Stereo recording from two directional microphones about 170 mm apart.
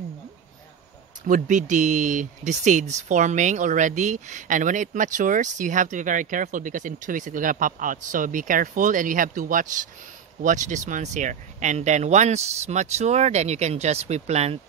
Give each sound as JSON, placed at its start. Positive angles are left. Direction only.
{"t": 1.2, "sound": "speech", "side_deg": -50}